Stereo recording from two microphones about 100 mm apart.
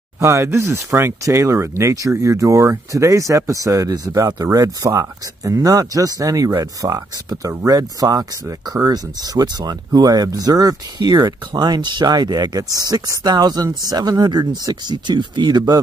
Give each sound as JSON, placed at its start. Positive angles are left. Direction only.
{"t": 0.2, "sound": "speech", "side_deg": -30}